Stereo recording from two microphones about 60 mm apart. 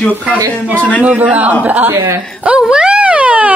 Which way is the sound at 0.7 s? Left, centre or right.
Left.